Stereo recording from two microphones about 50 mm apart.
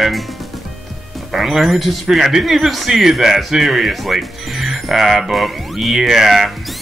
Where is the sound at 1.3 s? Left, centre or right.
Centre.